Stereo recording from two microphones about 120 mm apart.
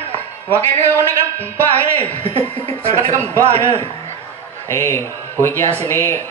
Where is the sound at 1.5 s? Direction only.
15° left (ahead or behind).